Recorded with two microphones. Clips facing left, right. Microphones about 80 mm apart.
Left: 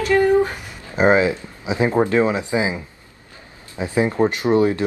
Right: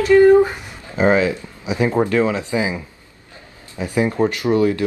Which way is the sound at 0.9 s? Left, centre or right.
Left.